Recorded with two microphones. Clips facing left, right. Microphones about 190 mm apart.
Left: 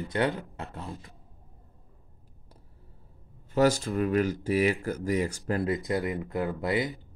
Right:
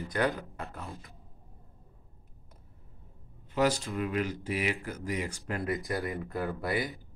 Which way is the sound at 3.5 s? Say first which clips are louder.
Left 4 dB; 45° left (ahead or behind).